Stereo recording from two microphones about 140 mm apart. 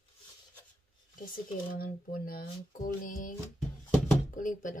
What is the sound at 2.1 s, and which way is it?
Speech, 90° left.